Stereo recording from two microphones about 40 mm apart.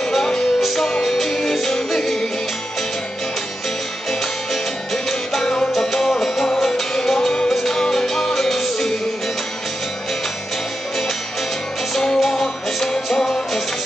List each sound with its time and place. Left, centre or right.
0.1 s music: centre
5.7 s music: centre
11.9 s music: centre